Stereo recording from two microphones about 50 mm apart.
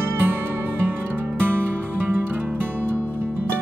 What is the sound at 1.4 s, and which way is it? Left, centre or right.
Music, right.